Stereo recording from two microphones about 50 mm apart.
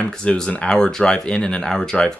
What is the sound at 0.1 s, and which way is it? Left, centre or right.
Speech, centre.